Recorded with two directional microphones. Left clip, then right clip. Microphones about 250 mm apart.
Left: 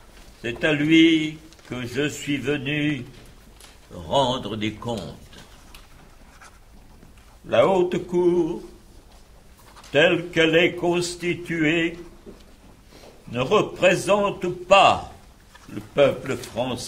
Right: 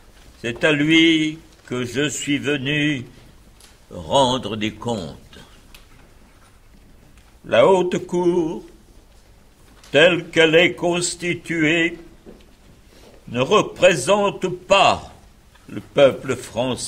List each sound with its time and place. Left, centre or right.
0.4 s a man's voice: centre
7.4 s a man's voice: centre
9.8 s a man's voice: centre
13.3 s a man's voice: centre